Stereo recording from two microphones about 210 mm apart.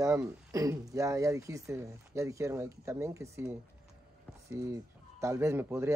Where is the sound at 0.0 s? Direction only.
15° right (ahead or behind).